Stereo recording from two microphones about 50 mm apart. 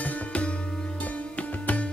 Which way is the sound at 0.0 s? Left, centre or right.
Left.